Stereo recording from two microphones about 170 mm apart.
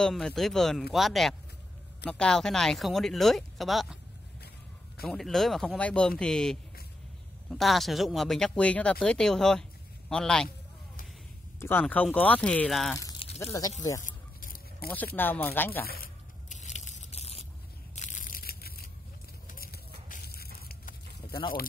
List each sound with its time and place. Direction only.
0.0 s speech: centre (ahead or behind)
5.0 s speech: centre (ahead or behind)
11.8 s speech: 10° left (ahead or behind)
13.4 s speech: 20° left (ahead or behind)
14.0 s a sound: 55° left (ahead or behind)
15.1 s speech: 10° left (ahead or behind)
16.0 s scrape: 45° left (ahead or behind)
17.9 s crushing: 45° left (ahead or behind); by 18.9 s 65° left (ahead or behind)
19.5 s a sound: 60° left (ahead or behind)